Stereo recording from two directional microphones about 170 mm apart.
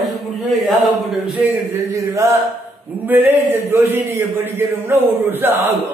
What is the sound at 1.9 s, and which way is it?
Speech, 20° right (ahead or behind).